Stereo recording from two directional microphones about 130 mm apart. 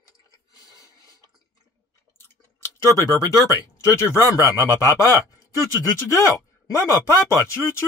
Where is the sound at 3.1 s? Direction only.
25° left (ahead or behind).